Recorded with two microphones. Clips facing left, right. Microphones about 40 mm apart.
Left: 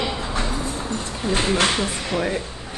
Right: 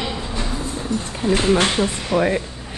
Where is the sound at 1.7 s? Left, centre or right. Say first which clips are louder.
Right 4 dB; right.